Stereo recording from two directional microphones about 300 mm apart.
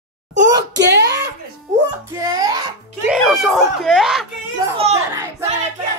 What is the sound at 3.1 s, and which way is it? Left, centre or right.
Speech, centre.